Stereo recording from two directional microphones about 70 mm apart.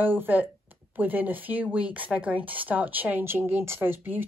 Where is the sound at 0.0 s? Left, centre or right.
Right.